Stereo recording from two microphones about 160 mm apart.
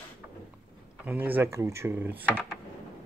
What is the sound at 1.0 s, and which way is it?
Speech, 10° right (ahead or behind).